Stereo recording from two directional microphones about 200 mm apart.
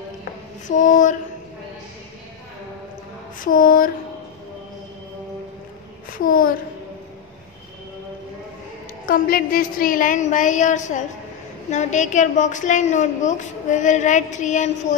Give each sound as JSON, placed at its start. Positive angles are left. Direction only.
{"t": 0.7, "sound": "a woman's voice", "side_deg": 40}
{"t": 3.3, "sound": "a sound", "side_deg": 45}
{"t": 9.0, "sound": "a woman's voice", "side_deg": 45}